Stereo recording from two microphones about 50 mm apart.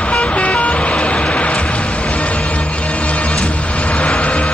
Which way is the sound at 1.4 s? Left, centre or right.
Left.